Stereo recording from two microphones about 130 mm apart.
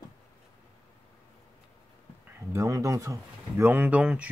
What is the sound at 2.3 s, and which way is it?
Speech, 20° right (ahead or behind).